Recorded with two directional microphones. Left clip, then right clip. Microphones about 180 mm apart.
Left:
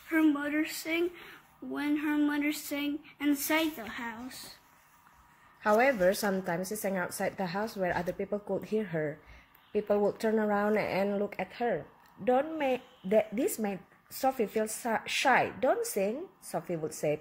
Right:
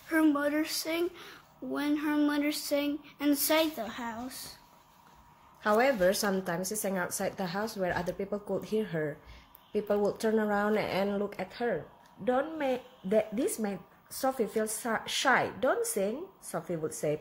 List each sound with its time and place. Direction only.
0.1 s speech: 35° right (ahead or behind)
5.6 s a woman's voice: 15° left (ahead or behind)